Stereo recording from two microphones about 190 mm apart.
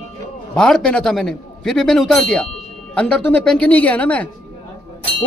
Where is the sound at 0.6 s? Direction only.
5° left (ahead or behind).